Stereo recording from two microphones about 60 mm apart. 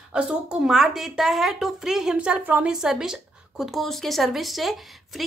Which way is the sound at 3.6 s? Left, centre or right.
Centre.